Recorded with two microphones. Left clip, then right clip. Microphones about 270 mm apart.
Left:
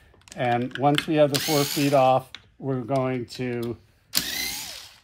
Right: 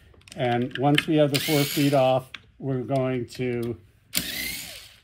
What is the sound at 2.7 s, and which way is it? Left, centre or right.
Speech, left.